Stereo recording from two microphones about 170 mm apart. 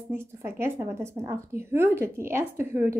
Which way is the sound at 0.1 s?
15° right (ahead or behind).